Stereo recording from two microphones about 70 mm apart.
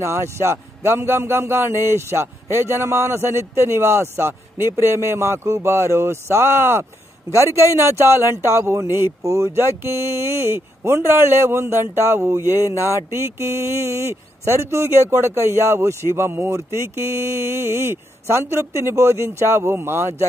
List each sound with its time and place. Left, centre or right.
0.0 s a man's voice: right